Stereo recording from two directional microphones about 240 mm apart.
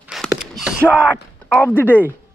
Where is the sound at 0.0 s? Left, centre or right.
Centre.